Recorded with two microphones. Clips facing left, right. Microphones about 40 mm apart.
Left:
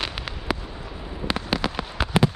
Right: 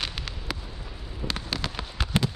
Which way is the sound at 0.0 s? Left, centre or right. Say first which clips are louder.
Left 3 dB; centre.